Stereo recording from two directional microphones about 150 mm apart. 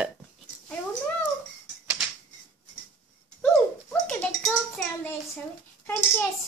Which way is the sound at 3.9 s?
10° left (ahead or behind).